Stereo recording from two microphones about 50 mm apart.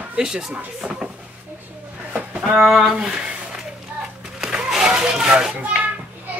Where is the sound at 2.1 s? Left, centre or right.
Right.